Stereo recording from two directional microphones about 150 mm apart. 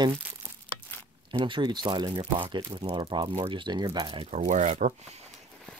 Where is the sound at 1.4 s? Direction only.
30° right (ahead or behind).